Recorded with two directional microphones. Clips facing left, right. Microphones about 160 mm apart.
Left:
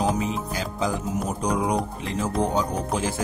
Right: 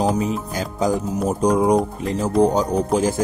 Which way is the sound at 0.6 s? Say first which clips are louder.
Right 7 dB; 45° right (ahead or behind).